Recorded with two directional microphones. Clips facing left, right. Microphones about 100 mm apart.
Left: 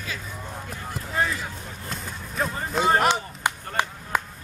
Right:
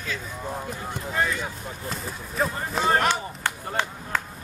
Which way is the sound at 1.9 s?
Centre (ahead or behind).